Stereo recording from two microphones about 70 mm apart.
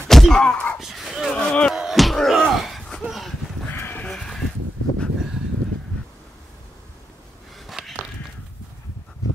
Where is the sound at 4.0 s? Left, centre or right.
Centre.